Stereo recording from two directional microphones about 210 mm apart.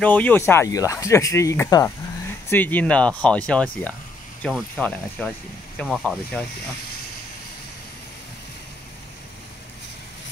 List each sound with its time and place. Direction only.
0.0 s speech: 5° left (ahead or behind)